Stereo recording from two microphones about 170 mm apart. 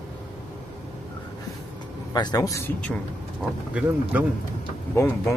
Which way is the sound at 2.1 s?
25° left (ahead or behind).